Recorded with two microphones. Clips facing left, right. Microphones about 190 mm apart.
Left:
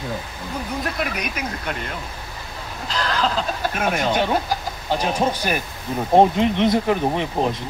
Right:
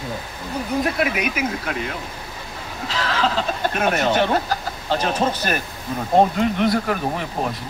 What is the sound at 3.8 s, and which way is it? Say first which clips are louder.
Speech: right 2 dB; 10° left (ahead or behind).